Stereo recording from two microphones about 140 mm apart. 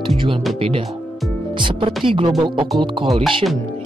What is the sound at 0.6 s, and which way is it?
Speech, 40° right (ahead or behind).